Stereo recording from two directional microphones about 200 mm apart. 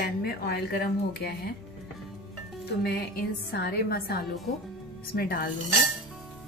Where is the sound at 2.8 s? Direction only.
55° left (ahead or behind).